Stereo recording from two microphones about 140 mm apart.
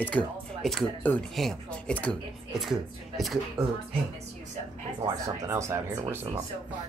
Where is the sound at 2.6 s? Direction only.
Centre (ahead or behind).